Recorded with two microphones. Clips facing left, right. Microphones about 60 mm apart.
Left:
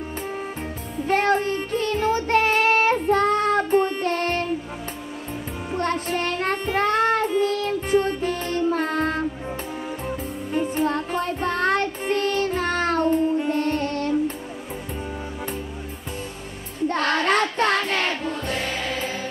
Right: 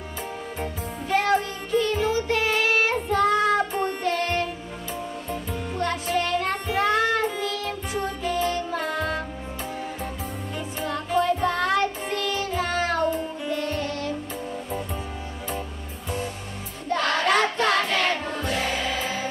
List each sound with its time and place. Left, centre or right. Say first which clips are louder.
1.0 s child singing: left 2 dB; left
5.8 s music: left 1 dB; left
10.5 s music: left 9 dB; left
16.9 s child singing: even; left
18.4 s music: right 1 dB; right